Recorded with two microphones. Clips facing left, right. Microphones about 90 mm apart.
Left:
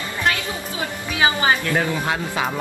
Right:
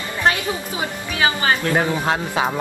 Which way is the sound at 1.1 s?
20° left (ahead or behind).